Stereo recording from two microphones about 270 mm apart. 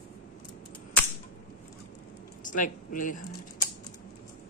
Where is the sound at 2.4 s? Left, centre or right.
Left.